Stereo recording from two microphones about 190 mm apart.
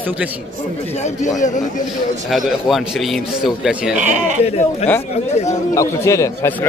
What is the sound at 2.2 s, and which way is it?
Speech, centre (ahead or behind).